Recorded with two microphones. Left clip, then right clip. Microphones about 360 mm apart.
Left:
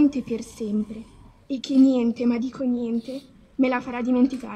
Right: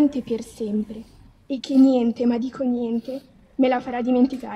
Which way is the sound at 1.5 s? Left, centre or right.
Right.